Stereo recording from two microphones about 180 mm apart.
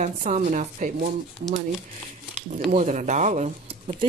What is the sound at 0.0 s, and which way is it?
Speech, 40° right (ahead or behind).